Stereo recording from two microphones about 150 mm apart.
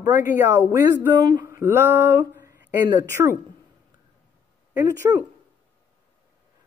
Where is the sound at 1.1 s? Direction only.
25° right (ahead or behind).